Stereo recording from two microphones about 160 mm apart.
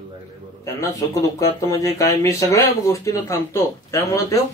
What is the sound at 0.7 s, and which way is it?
Speech, 20° left (ahead or behind).